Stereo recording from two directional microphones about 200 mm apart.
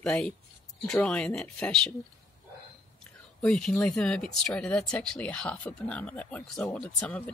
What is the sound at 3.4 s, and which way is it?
Speech, 5° left (ahead or behind).